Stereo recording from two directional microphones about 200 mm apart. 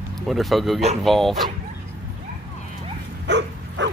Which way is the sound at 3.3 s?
60° right (ahead or behind).